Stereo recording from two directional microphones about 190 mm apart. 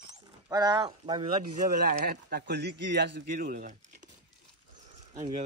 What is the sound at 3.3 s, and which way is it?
Speech, 45° right (ahead or behind).